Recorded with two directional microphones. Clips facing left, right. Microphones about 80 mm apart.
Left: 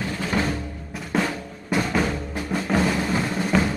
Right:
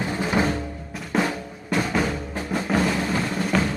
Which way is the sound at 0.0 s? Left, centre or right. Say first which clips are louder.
Right 2 dB; centre.